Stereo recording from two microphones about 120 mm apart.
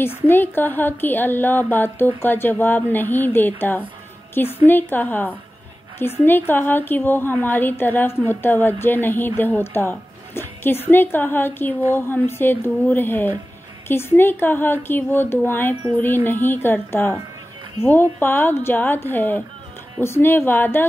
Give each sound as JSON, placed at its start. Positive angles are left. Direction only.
{"t": 0.0, "sound": "a woman's voice", "side_deg": 15}
{"t": 18.2, "sound": "a woman's voice", "side_deg": 15}